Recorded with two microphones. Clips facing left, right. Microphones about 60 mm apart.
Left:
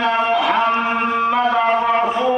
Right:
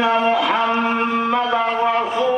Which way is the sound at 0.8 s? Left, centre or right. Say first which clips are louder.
Left 1 dB; left.